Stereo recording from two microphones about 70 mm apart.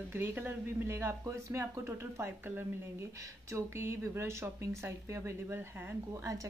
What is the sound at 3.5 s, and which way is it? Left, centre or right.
Speech, right.